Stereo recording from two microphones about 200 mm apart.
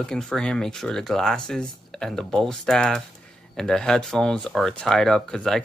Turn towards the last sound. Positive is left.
turn(degrees=5)  # may be behind; listen again after turning